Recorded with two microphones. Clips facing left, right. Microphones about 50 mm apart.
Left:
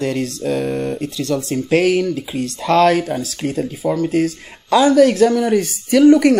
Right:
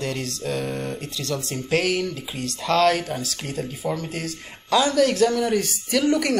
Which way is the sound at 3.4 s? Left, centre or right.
Left.